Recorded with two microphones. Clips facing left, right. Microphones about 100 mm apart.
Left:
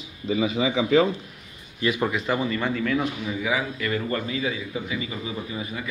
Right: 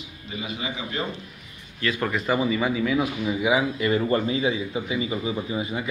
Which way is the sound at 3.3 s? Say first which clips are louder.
Right 4 dB; 20° right (ahead or behind).